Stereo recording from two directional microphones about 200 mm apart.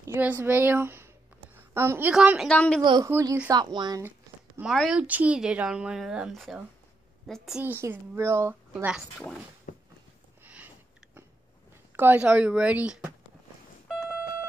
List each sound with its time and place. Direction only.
0.0 s a woman's voice: 10° right (ahead or behind)
2.8 s speech: 20° right (ahead or behind)
3.1 s speech: 10° right (ahead or behind)
4.6 s speech: centre (ahead or behind)
9.7 s walk: 40° left (ahead or behind)
10.4 s a sound: 10° right (ahead or behind)
12.0 s speech: 10° right (ahead or behind)
13.8 s a sound: centre (ahead or behind)